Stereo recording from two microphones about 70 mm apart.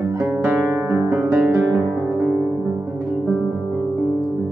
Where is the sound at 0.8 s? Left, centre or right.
Right.